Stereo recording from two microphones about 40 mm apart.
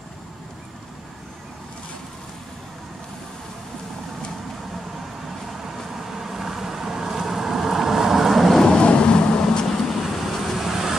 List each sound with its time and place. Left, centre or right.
5.5 s vehicle: centre
8.6 s vehicle: left
9.8 s vehicle: centre
10.6 s vehicle: centre